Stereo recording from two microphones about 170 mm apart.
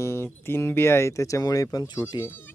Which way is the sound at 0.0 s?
15° left (ahead or behind).